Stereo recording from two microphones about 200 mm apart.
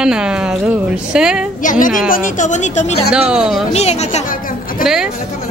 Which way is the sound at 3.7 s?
35° left (ahead or behind).